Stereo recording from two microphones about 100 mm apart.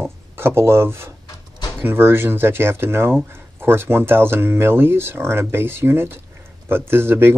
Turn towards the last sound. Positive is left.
turn(degrees=-25)  # may be behind; listen again after turning